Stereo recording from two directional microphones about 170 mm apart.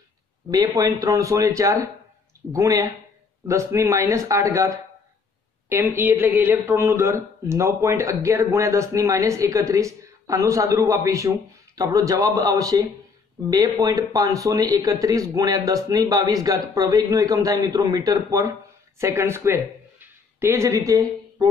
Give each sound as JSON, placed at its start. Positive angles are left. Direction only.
{"t": 0.5, "sound": "a man's voice", "side_deg": -20}